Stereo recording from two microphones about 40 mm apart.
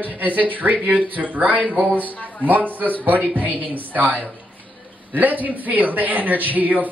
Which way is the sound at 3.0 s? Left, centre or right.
Right.